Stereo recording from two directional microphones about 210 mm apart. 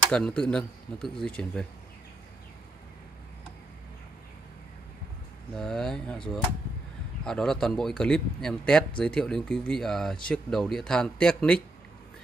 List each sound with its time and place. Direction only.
0.1 s speech: 5° left (ahead or behind)
5.6 s speech: centre (ahead or behind)
7.2 s speech: 5° left (ahead or behind)